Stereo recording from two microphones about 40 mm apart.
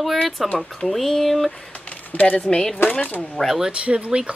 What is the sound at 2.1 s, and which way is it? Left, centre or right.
Speech, left.